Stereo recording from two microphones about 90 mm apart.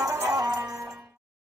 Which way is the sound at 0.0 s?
40° right (ahead or behind).